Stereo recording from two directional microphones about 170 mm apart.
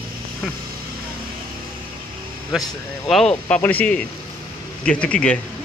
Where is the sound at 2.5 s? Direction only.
Centre (ahead or behind).